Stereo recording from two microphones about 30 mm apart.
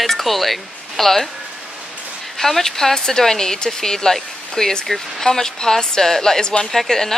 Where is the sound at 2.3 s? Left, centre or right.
Centre.